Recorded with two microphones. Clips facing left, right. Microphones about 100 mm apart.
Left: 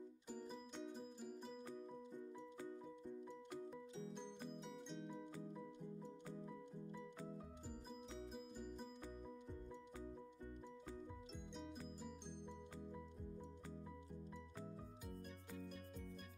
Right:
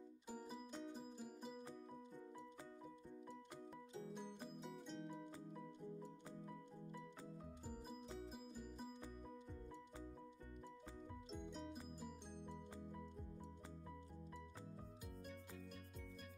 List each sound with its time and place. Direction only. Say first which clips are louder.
0.3 s music: right 1 dB; 5° right (ahead or behind)
4.2 s music: left 1 dB; 5° right (ahead or behind)
8.3 s music: left 2 dB; centre (ahead or behind)
11.5 s music: left 3 dB; 5° right (ahead or behind)